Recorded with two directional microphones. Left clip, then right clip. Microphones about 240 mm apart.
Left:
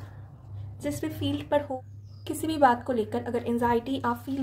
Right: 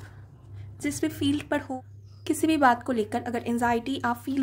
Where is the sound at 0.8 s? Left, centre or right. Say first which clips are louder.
Right 4 dB; right.